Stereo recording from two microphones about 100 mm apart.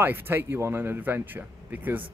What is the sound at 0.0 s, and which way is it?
Speech, 20° right (ahead or behind).